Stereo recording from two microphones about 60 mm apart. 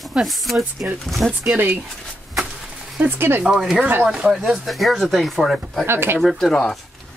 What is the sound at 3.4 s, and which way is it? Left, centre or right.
Speech, centre.